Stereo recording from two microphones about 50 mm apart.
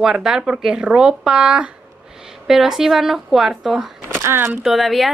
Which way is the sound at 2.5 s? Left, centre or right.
Centre.